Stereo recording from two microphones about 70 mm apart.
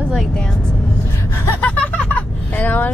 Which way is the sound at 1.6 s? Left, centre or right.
Left.